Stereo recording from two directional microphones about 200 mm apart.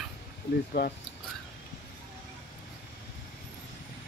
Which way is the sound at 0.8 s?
55° left (ahead or behind).